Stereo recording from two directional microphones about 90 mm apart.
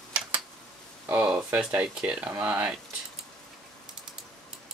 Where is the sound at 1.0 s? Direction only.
25° right (ahead or behind).